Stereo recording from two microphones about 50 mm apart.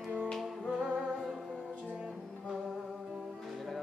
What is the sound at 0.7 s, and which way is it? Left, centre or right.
Music, centre.